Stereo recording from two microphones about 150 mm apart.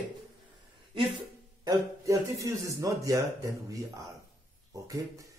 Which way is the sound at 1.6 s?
25° right (ahead or behind).